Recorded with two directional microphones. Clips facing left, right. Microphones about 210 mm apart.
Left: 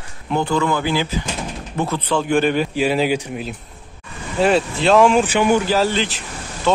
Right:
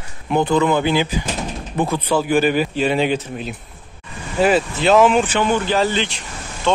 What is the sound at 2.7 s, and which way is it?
Speech, 5° left (ahead or behind).